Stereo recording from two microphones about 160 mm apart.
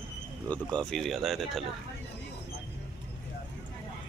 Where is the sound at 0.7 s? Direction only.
5° left (ahead or behind).